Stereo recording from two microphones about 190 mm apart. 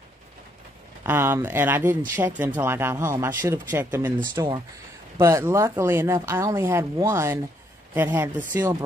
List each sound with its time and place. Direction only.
1.0 s speech: 10° right (ahead or behind)